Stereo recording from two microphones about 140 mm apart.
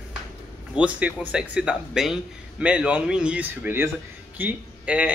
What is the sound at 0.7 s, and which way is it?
Speech, 10° right (ahead or behind).